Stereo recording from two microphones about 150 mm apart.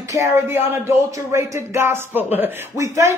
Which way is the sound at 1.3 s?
20° right (ahead or behind).